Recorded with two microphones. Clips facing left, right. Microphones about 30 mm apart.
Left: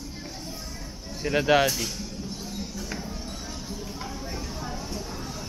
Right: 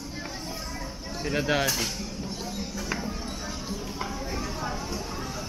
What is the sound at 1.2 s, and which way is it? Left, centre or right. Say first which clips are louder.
Speech: left 5 dB; centre.